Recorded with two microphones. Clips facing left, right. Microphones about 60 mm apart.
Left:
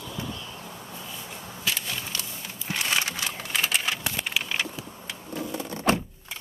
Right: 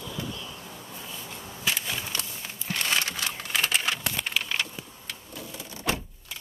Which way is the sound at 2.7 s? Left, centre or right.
Centre.